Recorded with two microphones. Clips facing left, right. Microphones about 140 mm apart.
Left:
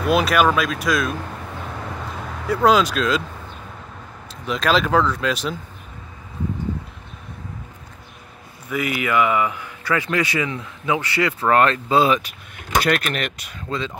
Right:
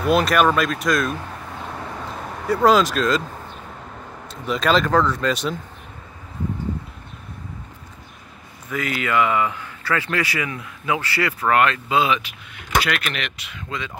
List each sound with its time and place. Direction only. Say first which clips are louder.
0.0 s speech: even; centre (ahead or behind)
2.4 s speech: even; centre (ahead or behind)
4.3 s speech: right 1 dB; centre (ahead or behind)
8.6 s speech: left 2 dB; 15° left (ahead or behind)
11.5 s speech: left 2 dB; 35° left (ahead or behind)